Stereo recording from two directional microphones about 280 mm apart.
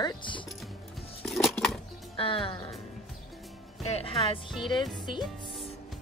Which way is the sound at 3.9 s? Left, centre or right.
Left.